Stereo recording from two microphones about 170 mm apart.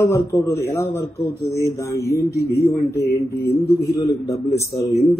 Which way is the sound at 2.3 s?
70° left (ahead or behind).